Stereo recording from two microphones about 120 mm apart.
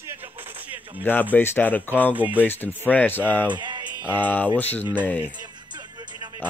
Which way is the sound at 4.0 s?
15° left (ahead or behind).